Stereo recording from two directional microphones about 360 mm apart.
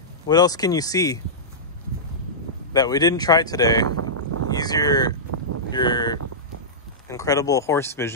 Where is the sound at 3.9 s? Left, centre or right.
Right.